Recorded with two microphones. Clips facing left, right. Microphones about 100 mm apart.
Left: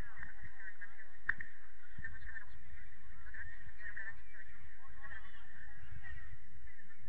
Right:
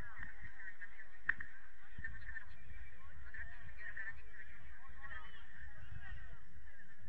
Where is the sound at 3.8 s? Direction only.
15° left (ahead or behind).